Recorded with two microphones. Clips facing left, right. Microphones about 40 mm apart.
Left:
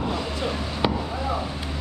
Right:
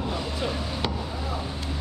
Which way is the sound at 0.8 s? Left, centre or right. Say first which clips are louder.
Left 8 dB; centre.